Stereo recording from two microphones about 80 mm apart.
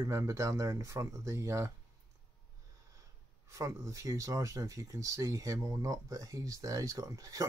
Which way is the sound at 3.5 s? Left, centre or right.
Right.